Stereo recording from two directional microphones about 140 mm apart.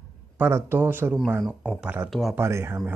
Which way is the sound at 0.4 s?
15° right (ahead or behind).